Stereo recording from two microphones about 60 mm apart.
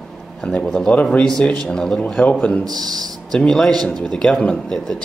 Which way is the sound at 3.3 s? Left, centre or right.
Centre.